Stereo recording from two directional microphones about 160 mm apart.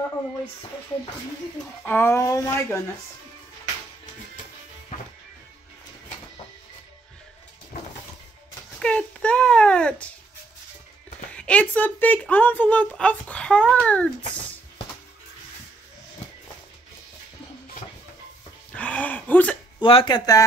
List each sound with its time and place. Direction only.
1.9 s a woman's voice: 15° left (ahead or behind)
8.7 s a sound: 5° left (ahead or behind)
11.3 s a woman's voice: 10° left (ahead or behind)
18.8 s gasp: 10° left (ahead or behind)
19.8 s speech: 35° left (ahead or behind)